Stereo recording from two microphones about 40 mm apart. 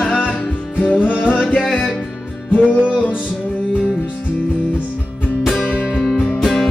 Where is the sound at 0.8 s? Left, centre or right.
Left.